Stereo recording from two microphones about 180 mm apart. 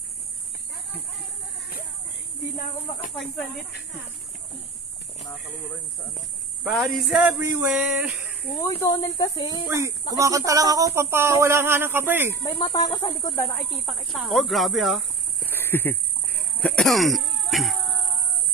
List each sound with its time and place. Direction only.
3.2 s speech: centre (ahead or behind)
6.6 s speech: centre (ahead or behind)
8.6 s speech: 15° left (ahead or behind)
9.7 s speech: 15° right (ahead or behind)
12.4 s speech: 20° left (ahead or behind)
13.8 s speech: centre (ahead or behind)
15.5 s a sound: 10° left (ahead or behind)
16.5 s cough: 5° left (ahead or behind)